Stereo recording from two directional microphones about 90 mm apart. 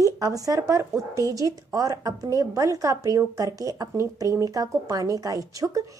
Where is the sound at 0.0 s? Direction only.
40° right (ahead or behind).